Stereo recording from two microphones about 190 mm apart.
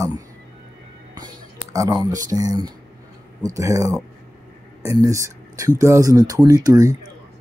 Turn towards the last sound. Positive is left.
turn(degrees=-20)  # may be behind; listen again after turning